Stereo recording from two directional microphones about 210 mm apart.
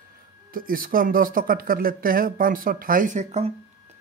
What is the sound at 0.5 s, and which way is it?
Speech, 40° right (ahead or behind).